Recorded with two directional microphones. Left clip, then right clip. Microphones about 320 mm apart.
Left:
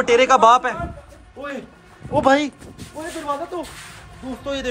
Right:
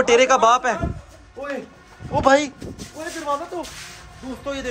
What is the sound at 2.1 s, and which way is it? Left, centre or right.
Speech, centre.